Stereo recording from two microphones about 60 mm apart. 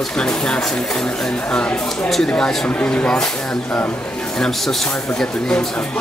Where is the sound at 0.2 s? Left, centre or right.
Centre.